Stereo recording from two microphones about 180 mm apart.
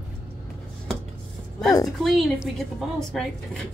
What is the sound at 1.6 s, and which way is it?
Music, 20° left (ahead or behind).